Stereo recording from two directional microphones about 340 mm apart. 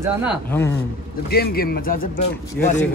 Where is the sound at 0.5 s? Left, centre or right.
Centre.